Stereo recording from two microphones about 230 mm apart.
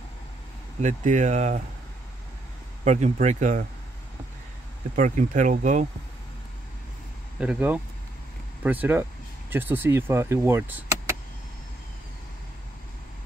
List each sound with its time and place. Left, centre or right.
0.7 s speech: right
2.8 s speech: right
4.9 s speech: right
7.3 s speech: centre